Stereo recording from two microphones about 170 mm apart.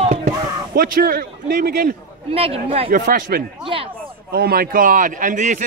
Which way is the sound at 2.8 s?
55° right (ahead or behind).